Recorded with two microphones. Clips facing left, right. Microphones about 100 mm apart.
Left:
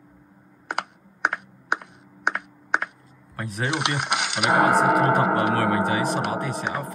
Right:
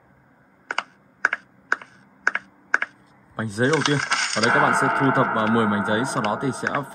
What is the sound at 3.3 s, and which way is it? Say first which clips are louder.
Speech: right 7 dB; 30° right (ahead or behind).